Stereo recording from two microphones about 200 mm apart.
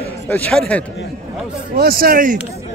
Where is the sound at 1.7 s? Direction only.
45° right (ahead or behind).